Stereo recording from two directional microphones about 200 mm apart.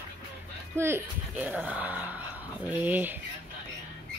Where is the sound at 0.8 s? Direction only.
10° right (ahead or behind).